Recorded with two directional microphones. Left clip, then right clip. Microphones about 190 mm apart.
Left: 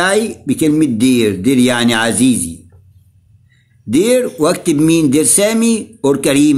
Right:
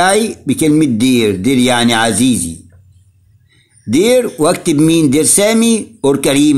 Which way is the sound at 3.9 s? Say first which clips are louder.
Right 2 dB; 25° right (ahead or behind).